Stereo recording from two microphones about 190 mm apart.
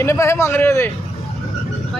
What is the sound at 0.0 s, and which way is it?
Speech, 15° left (ahead or behind).